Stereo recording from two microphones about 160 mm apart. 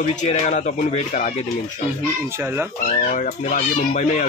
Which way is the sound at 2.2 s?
15° right (ahead or behind).